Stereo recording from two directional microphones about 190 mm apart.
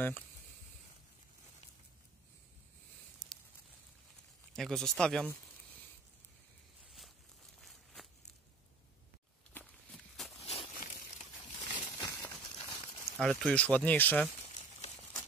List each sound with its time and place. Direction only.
4.6 s speech: 5° left (ahead or behind)
7.6 s walk: centre (ahead or behind)
9.5 s walk: 10° left (ahead or behind)
10.4 s a sound: 35° left (ahead or behind)
12.0 s a sound: 15° left (ahead or behind)
13.2 s speech: centre (ahead or behind)